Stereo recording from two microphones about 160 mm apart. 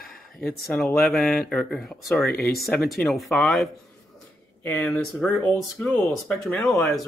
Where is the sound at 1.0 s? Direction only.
Centre (ahead or behind).